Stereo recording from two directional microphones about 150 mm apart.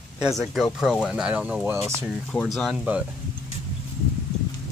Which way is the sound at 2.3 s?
5° left (ahead or behind).